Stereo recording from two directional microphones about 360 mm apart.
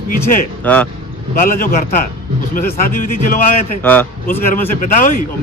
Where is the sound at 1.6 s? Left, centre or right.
Left.